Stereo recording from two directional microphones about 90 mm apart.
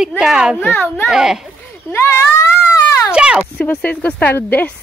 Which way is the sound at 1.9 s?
30° left (ahead or behind).